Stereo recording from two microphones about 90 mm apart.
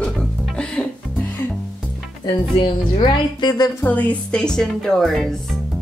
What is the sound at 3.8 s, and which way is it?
A woman's voice, 20° left (ahead or behind).